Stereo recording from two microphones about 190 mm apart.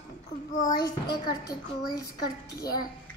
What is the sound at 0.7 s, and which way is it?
A child's voice, 20° left (ahead or behind).